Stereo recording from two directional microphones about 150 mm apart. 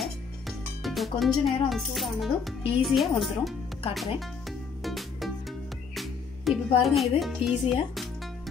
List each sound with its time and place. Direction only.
0.0 s speech: centre (ahead or behind)
3.9 s music: centre (ahead or behind)
7.0 s speech: centre (ahead or behind)